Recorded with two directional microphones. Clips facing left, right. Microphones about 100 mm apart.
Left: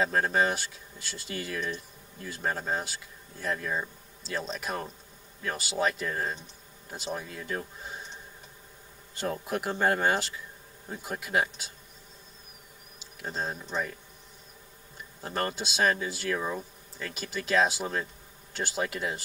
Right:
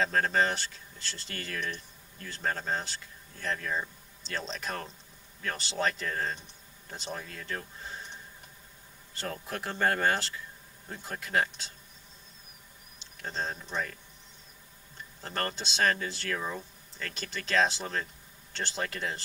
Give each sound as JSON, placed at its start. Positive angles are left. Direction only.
{"t": 0.0, "sound": "speech", "side_deg": 10}
{"t": 9.1, "sound": "speech", "side_deg": 15}
{"t": 13.0, "sound": "speech", "side_deg": 10}
{"t": 15.2, "sound": "speech", "side_deg": 10}